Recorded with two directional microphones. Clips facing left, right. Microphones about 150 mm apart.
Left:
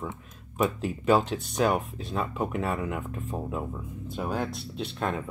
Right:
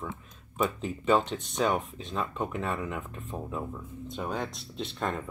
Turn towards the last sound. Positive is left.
turn(degrees=0)  # may be behind; listen again after turning